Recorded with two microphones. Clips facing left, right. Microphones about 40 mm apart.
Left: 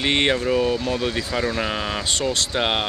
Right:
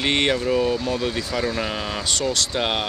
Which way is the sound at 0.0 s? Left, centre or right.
Centre.